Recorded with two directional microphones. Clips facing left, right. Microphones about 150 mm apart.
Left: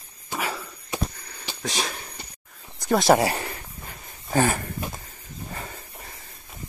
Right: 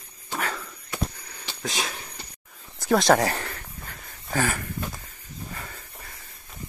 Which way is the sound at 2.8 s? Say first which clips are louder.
Left 1 dB; centre (ahead or behind).